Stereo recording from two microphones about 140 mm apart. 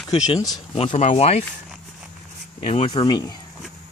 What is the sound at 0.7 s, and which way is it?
Speech, 50° left (ahead or behind).